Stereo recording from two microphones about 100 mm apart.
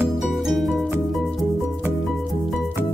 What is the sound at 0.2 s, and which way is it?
Music, centre (ahead or behind).